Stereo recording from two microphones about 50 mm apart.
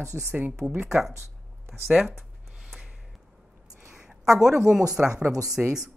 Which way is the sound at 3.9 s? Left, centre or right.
Centre.